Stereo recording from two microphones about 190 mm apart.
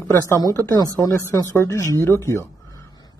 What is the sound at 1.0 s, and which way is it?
Speech, 15° left (ahead or behind).